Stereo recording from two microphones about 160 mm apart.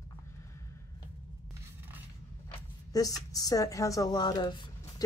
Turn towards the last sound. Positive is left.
turn(degrees=25)  # may be behind; listen again after turning